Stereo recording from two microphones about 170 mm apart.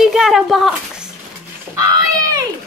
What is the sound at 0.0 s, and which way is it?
A child's voice, centre (ahead or behind).